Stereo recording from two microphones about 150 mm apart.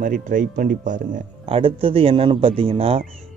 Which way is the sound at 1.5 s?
35° right (ahead or behind).